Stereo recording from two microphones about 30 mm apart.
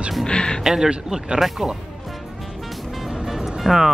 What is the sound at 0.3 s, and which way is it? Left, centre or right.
Music, left.